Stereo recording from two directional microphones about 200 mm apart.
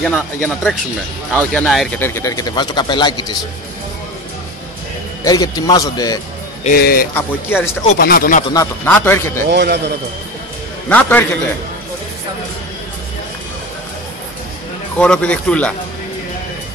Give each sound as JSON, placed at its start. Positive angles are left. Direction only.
{"t": 0.0, "sound": "speech", "side_deg": 0}
{"t": 5.2, "sound": "a man's voice", "side_deg": 20}
{"t": 6.6, "sound": "speech", "side_deg": 45}
{"t": 7.2, "sound": "a man's voice", "side_deg": 10}
{"t": 8.0, "sound": "speech", "side_deg": 50}
{"t": 8.8, "sound": "a man's voice", "side_deg": 10}
{"t": 9.5, "sound": "a man's voice", "side_deg": -55}
{"t": 10.9, "sound": "a man's voice", "side_deg": 5}
{"t": 15.0, "sound": "speech", "side_deg": 5}